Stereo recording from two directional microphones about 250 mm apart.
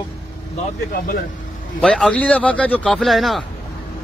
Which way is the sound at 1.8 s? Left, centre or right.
Centre.